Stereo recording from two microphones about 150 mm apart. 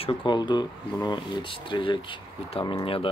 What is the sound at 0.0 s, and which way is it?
Speech, 30° left (ahead or behind).